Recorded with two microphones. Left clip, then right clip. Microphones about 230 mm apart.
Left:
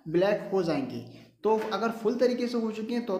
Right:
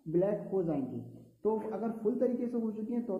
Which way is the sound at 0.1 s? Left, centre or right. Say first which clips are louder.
Left 6 dB; centre.